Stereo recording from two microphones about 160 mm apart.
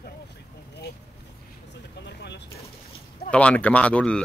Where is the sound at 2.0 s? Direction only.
90° left.